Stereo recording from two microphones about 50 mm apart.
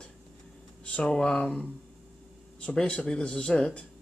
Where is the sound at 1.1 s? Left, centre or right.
Centre.